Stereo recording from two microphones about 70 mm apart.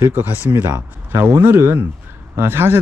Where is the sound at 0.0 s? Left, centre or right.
Right.